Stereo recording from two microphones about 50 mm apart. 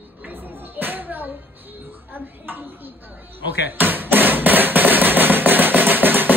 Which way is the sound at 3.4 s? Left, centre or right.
Right.